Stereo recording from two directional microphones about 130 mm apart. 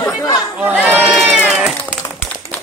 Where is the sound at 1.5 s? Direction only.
10° right (ahead or behind).